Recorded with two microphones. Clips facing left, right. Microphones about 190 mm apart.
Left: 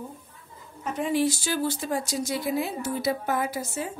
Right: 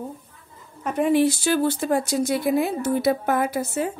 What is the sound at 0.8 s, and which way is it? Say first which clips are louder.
Speech: right 6 dB; 55° right (ahead or behind).